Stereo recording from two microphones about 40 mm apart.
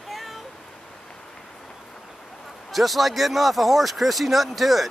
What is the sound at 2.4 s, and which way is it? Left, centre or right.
Speech, centre.